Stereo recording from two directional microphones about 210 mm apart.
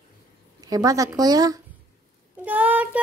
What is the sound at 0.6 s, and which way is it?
A woman's voice, 15° right (ahead or behind).